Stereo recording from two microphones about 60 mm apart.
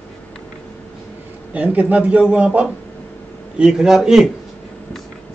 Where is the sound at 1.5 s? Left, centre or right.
Right.